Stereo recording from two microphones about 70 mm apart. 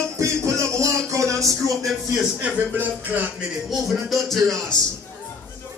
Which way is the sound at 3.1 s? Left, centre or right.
Right.